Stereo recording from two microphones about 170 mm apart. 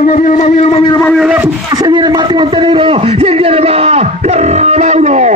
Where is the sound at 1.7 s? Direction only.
25° right (ahead or behind); by 5.3 s 40° right (ahead or behind).